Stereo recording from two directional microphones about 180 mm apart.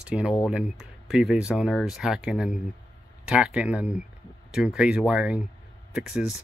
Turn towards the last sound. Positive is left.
turn(degrees=-5)  # may be behind; listen again after turning